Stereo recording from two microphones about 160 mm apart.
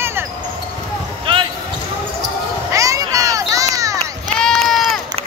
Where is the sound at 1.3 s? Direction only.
35° right (ahead or behind).